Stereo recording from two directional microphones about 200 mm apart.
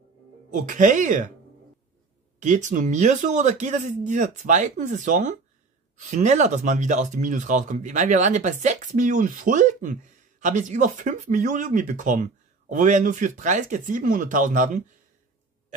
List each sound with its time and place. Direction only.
0.5 s speech: 40° right (ahead or behind)
2.4 s speech: 40° right (ahead or behind)